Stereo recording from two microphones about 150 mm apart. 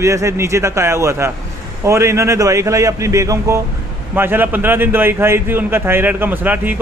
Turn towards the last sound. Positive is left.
turn(degrees=-10)  # may be behind; listen again after turning